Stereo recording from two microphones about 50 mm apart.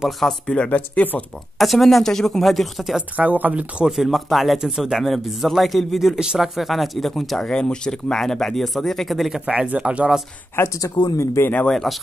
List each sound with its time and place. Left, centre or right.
0.2 s speech: centre
0.7 s speech: left
1.6 s speech: centre
3.2 s speech: right
3.9 s speech: centre
6.1 s speech: centre
9.7 s speech: right
10.5 s speech: left
11.7 s speech: centre